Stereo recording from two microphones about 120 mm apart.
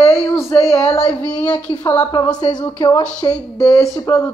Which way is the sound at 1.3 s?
10° left (ahead or behind).